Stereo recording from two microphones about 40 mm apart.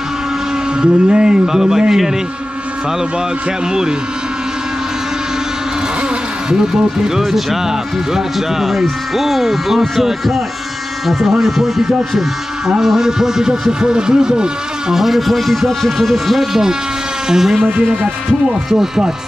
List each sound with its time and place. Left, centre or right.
0.7 s speech: right
7.2 s speech: centre
15.0 s speech: centre